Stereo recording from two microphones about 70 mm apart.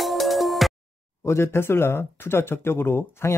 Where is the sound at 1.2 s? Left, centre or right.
Left.